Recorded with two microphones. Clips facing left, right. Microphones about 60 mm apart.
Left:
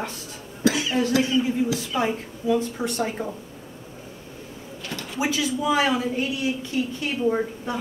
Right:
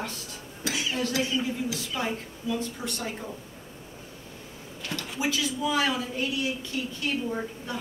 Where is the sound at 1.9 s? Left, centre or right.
Left.